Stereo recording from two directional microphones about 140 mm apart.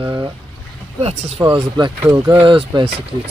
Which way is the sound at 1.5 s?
35° right (ahead or behind).